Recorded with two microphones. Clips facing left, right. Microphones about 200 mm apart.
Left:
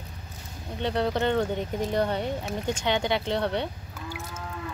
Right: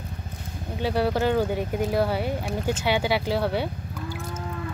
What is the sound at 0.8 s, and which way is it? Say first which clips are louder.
Speech: right 2 dB; 5° right (ahead or behind).